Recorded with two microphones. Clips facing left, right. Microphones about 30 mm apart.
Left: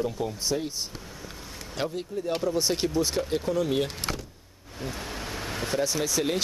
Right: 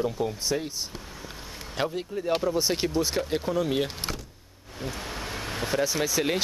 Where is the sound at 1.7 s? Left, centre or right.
Centre.